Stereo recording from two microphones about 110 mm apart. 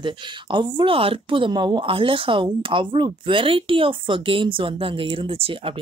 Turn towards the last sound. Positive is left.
turn(degrees=-55)  # may be behind; listen again after turning